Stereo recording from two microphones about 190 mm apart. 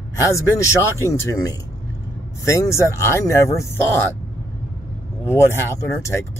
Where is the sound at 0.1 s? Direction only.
15° left (ahead or behind).